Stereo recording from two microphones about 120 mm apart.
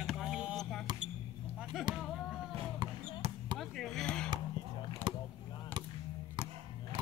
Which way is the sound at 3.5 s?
5° left (ahead or behind).